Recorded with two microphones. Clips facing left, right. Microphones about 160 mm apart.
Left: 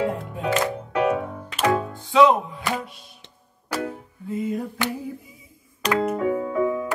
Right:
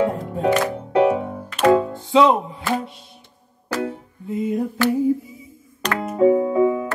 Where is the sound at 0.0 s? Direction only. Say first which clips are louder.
Right 5 dB; 40° right (ahead or behind).